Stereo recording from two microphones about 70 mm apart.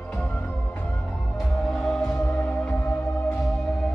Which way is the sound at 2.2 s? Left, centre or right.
Left.